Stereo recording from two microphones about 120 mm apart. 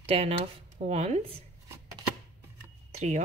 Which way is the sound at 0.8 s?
70° right (ahead or behind).